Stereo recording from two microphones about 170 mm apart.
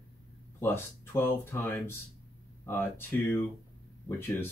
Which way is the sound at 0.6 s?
15° left (ahead or behind).